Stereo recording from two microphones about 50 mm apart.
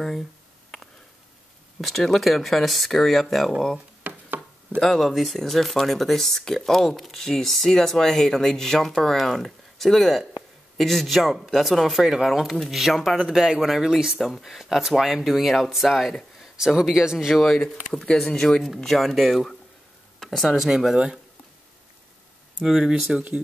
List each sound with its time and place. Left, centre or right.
1.8 s speech: centre
4.0 s chopping: right
4.7 s speech: centre
14.1 s speech: centre
16.5 s speech: centre
17.4 s speech: centre
22.6 s speech: centre